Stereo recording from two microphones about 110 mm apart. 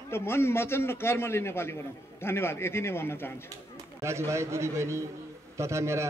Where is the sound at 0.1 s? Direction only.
20° left (ahead or behind).